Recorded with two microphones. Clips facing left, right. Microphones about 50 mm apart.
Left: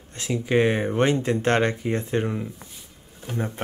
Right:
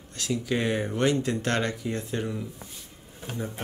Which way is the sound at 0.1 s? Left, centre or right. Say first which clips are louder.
Left 5 dB; left.